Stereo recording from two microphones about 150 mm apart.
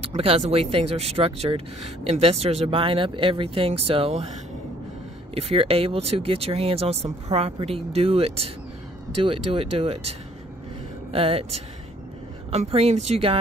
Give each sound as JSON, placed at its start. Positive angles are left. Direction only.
{"t": 0.0, "sound": "speech", "side_deg": -40}
{"t": 5.3, "sound": "speech", "side_deg": -40}
{"t": 11.1, "sound": "speech", "side_deg": -40}